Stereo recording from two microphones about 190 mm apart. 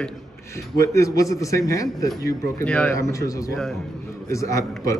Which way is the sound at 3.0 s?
15° left (ahead or behind).